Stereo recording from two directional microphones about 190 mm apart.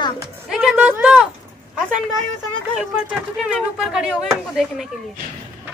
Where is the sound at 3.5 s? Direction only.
5° right (ahead or behind).